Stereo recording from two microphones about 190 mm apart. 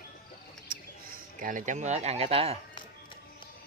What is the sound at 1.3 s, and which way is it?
Speech, 45° right (ahead or behind).